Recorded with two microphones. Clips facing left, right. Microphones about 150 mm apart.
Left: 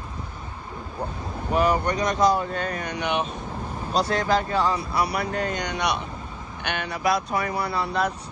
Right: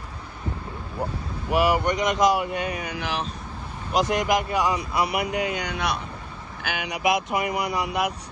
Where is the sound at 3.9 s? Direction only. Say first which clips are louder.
Right 1 dB; 15° right (ahead or behind).